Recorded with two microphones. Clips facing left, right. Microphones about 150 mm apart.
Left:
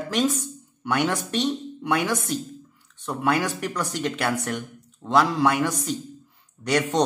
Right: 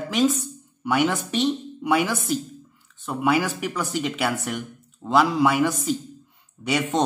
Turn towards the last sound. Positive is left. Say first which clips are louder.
# left 1 dB
turn(degrees=-5)  # may be behind; listen again after turning